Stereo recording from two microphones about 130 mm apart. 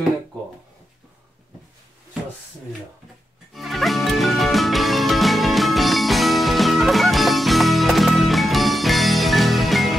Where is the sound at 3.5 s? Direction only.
Centre (ahead or behind).